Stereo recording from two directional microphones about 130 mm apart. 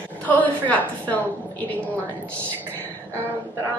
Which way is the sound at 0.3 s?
10° left (ahead or behind).